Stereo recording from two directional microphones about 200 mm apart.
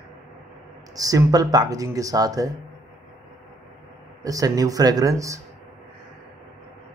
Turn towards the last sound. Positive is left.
turn(degrees=-15)  # may be behind; listen again after turning